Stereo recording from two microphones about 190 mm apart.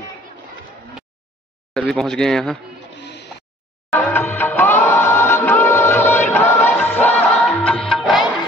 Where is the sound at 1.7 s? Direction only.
5° left (ahead or behind).